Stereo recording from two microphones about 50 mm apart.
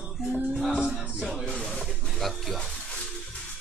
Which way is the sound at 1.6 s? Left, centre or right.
Centre.